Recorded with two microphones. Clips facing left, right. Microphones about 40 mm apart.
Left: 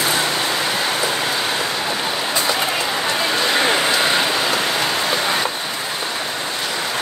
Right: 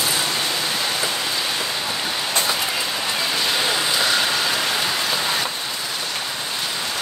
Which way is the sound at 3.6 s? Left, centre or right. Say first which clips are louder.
Left 5 dB; left.